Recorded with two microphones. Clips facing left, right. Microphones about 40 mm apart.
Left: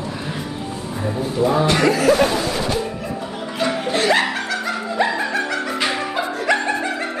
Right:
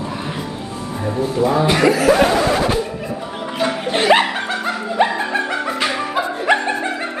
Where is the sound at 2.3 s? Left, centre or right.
Right.